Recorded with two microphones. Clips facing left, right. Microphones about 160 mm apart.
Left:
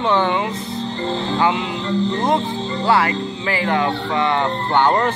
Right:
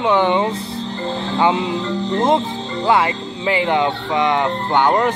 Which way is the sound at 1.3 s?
20° right (ahead or behind).